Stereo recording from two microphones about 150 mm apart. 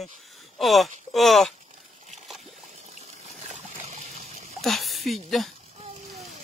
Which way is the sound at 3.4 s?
50° right (ahead or behind).